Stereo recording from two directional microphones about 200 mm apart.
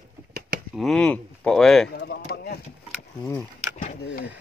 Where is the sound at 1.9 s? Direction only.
55° left (ahead or behind).